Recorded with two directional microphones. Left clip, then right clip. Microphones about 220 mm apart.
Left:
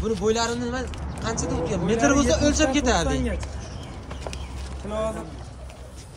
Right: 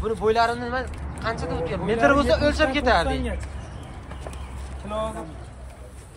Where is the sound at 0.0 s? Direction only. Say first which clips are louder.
Right 3 dB; 5° left (ahead or behind).